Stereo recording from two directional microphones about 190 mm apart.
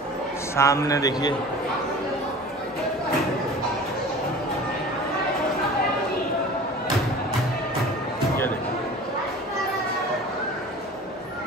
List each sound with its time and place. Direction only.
0.6 s a man's voice: 15° left (ahead or behind)